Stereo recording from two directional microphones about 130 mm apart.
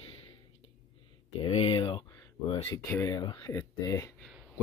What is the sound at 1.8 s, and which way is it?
Speech, 35° left (ahead or behind).